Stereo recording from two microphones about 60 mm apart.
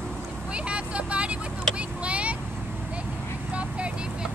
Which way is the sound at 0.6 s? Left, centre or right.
Centre.